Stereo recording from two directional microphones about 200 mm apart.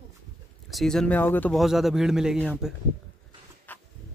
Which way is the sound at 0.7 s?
Centre (ahead or behind).